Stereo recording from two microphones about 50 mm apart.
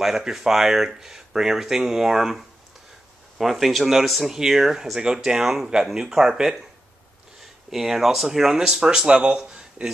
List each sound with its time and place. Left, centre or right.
0.0 s speech: centre
7.7 s speech: centre
9.1 s speech: right
9.5 s a sound: centre